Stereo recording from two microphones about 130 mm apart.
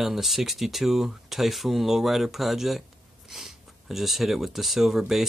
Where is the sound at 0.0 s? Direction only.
Centre (ahead or behind).